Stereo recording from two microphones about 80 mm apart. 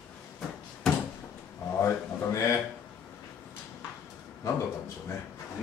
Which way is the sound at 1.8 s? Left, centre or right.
Left.